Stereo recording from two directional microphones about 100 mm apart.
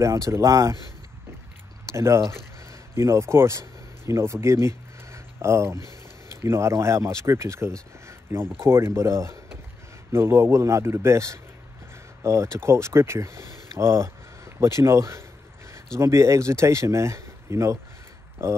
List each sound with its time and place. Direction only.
0.0 s speech: 30° right (ahead or behind)
1.9 s speech: 30° right (ahead or behind)
8.1 s a sound: 25° right (ahead or behind)
8.5 s speech: 25° right (ahead or behind)